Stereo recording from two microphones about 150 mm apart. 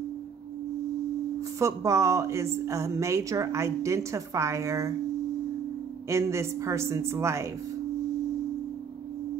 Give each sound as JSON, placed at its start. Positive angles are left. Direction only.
{"t": 1.6, "sound": "a woman's voice", "side_deg": -20}
{"t": 6.0, "sound": "a woman's voice", "side_deg": -20}